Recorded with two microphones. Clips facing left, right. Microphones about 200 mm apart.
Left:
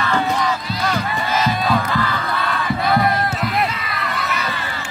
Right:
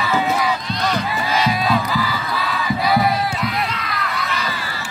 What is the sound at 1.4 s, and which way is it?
Crowd, centre (ahead or behind).